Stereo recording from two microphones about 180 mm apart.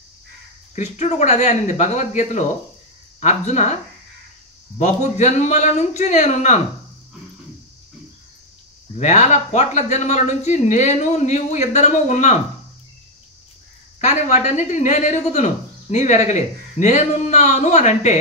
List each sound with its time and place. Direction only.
0.7 s speech: 40° left (ahead or behind)
4.7 s speech: 40° left (ahead or behind)
8.9 s speech: 40° left (ahead or behind)
13.9 s speech: 40° left (ahead or behind)